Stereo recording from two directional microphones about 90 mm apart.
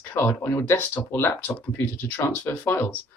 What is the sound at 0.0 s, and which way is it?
Speech, 25° left (ahead or behind).